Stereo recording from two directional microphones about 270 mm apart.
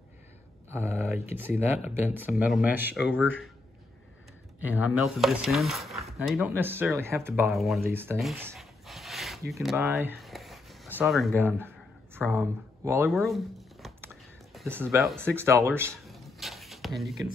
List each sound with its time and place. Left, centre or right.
0.7 s speech: centre
3.1 s speech: left
4.8 s speech: centre
9.5 s a sound: centre
12.3 s speech: centre
13.1 s shuffling cards: centre
15.8 s a sound: centre